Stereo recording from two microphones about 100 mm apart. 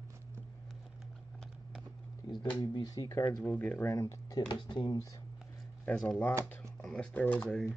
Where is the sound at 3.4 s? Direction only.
15° left (ahead or behind).